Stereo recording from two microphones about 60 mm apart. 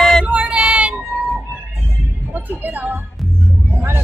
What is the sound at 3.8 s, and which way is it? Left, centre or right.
Speech, right.